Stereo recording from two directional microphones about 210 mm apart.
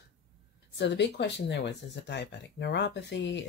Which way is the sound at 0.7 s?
55° left (ahead or behind).